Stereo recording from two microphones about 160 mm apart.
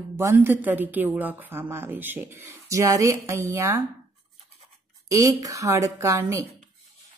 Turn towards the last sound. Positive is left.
turn(degrees=-20)  # may be behind; listen again after turning